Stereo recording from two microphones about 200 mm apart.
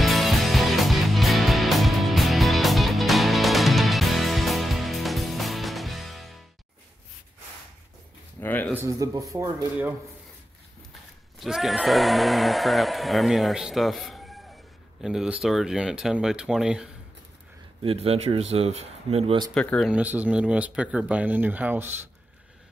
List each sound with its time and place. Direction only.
0.0 s music: centre (ahead or behind)
8.4 s a sound: 10° left (ahead or behind)
8.7 s speech: 15° right (ahead or behind)
11.3 s speech: centre (ahead or behind)
17.8 s speech: 30° right (ahead or behind)
19.5 s speech: 5° left (ahead or behind)
19.9 s speech: 10° right (ahead or behind)